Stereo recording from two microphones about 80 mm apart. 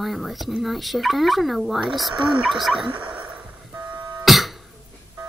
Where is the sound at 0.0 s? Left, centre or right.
Centre.